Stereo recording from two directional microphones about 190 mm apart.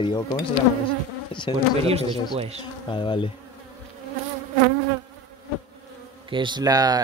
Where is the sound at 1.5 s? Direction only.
25° left (ahead or behind).